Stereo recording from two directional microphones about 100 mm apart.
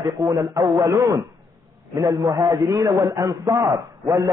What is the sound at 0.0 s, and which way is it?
A man's voice, 40° right (ahead or behind).